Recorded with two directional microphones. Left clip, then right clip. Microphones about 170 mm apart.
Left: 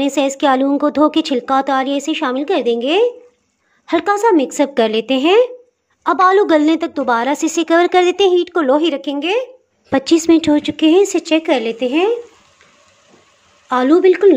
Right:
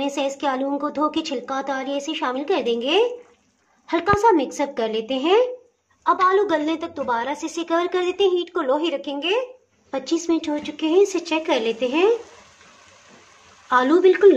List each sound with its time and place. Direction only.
0.0 s a woman's voice: 40° left (ahead or behind)
13.7 s a woman's voice: 35° left (ahead or behind)